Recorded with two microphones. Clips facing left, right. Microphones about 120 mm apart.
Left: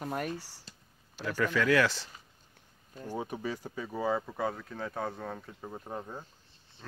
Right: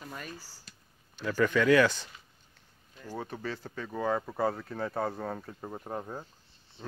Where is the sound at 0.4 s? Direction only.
75° left (ahead or behind).